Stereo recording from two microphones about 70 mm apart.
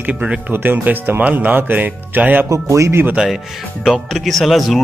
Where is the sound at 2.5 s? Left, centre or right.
Right.